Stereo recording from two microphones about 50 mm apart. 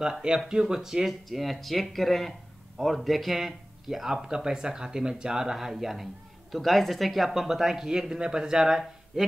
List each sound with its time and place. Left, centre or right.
0.0 s speech: centre